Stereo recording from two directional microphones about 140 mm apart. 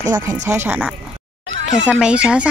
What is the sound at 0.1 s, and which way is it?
Speech, 25° right (ahead or behind).